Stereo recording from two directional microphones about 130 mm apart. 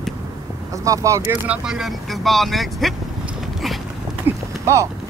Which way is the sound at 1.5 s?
5° right (ahead or behind).